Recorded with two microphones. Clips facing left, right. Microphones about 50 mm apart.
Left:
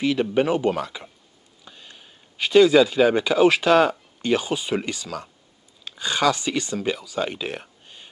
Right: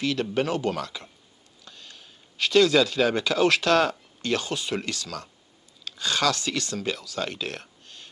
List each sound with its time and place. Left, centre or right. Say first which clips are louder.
0.0 s speech: left 5 dB; centre